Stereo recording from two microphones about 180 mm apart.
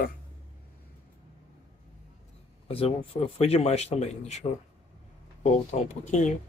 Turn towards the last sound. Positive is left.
turn(degrees=40)  # may be behind; listen again after turning